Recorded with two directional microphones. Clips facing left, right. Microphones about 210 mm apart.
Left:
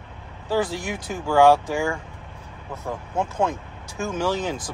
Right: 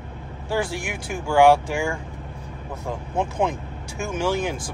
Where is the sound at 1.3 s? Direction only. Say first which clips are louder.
Even; 15° right (ahead or behind).